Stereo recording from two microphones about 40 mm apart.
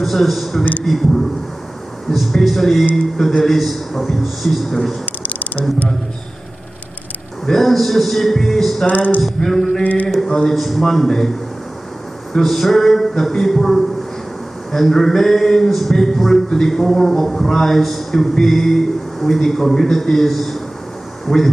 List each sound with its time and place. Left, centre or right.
0.0 s speech: centre
5.2 s a sound: left
7.4 s speech: centre
8.8 s a sound: left
9.2 s a man's voice: centre
12.4 s a man's voice: centre
14.7 s a man's voice: centre